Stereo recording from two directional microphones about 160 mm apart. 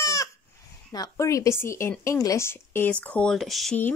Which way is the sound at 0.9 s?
20° left (ahead or behind).